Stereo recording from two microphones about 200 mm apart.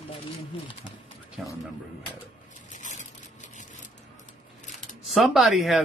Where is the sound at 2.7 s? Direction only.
35° left (ahead or behind).